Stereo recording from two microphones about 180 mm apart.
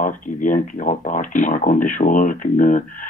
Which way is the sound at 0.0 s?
50° left (ahead or behind).